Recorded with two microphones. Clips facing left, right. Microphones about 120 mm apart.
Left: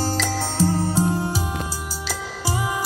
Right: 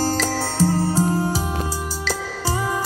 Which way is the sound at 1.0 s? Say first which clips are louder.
Right 1 dB; 5° right (ahead or behind).